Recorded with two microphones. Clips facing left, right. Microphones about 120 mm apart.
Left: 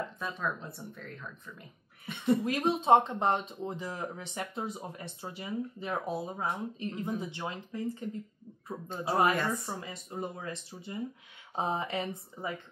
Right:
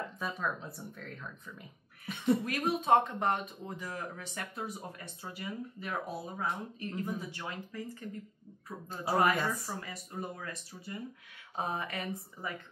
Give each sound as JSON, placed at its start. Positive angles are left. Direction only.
{"t": 0.2, "sound": "speech", "side_deg": -5}
{"t": 2.4, "sound": "speech", "side_deg": 30}
{"t": 9.3, "sound": "speech", "side_deg": 0}
{"t": 9.8, "sound": "speech", "side_deg": 25}